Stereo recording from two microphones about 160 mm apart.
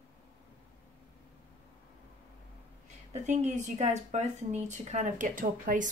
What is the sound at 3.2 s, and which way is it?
Speech, 45° right (ahead or behind).